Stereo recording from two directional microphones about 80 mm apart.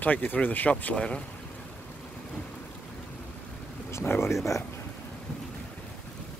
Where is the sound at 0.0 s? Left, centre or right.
Left.